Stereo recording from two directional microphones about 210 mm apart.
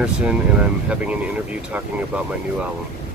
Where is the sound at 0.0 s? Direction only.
5° right (ahead or behind).